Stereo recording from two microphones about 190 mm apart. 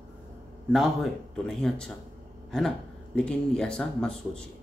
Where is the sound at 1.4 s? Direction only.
Centre (ahead or behind).